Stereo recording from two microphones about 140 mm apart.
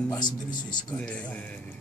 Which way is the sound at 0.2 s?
30° left (ahead or behind).